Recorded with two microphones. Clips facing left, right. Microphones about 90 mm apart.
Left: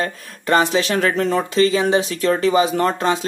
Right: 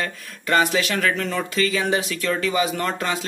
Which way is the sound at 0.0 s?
30° left (ahead or behind).